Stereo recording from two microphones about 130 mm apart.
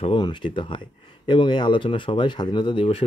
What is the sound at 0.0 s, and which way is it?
Speech, 40° left (ahead or behind).